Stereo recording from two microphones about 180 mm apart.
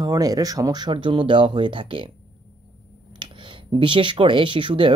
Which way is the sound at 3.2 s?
25° right (ahead or behind).